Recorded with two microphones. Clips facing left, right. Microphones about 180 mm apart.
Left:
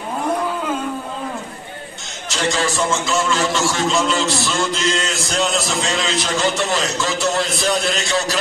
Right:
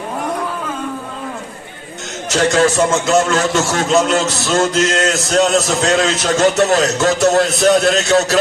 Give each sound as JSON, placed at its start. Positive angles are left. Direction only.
{"t": 2.6, "sound": "a man's voice", "side_deg": -40}